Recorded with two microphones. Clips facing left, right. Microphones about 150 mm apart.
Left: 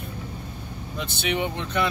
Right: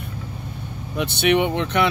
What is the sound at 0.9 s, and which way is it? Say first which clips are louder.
Speech: right 9 dB; 65° right (ahead or behind).